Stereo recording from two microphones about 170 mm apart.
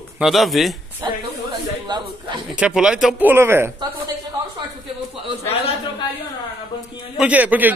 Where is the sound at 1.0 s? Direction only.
20° right (ahead or behind).